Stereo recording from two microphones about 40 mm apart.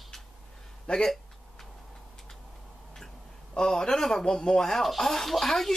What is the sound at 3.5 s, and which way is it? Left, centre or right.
Speech, centre.